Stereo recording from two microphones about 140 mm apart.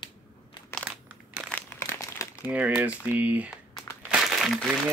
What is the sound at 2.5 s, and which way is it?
Speech, 10° right (ahead or behind).